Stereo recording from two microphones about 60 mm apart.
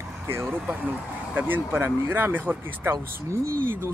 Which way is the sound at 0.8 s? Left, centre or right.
Right.